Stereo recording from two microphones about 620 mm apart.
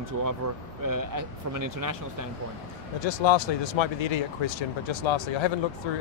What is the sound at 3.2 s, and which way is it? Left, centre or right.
Speech, left.